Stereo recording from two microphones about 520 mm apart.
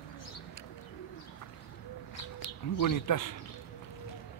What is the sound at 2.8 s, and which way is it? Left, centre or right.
Speech, left.